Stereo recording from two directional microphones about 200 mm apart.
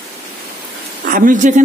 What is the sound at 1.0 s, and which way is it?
Speech, 40° right (ahead or behind).